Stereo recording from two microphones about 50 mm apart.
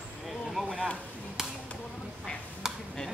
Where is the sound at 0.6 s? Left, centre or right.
Centre.